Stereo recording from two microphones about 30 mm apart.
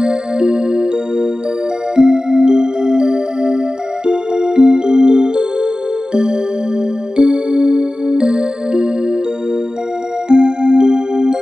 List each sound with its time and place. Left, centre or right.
0.0 s music: right
7.2 s music: right
10.2 s music: right